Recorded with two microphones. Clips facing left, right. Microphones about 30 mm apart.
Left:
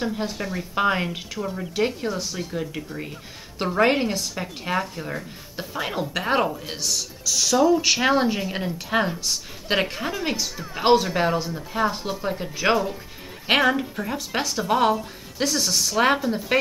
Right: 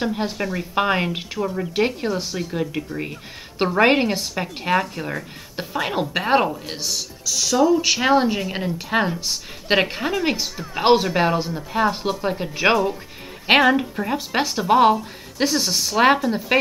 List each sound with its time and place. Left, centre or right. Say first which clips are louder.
0.0 s a woman's voice: right 3 dB; right
7.2 s speech: right 1 dB; centre
10.5 s speech: right 2 dB; centre
10.8 s a woman's voice: right 2 dB; right